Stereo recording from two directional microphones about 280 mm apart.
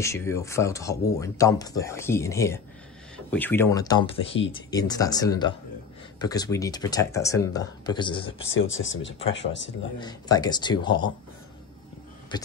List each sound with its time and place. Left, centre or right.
0.0 s speech: centre
8.5 s speech: left
9.9 s speech: centre